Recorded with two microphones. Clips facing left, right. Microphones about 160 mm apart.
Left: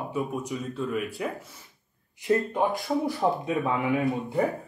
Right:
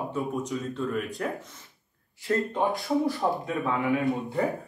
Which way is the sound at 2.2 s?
15° left (ahead or behind).